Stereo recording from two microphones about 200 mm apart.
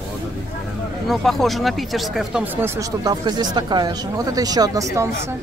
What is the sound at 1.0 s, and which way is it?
Speech, centre (ahead or behind).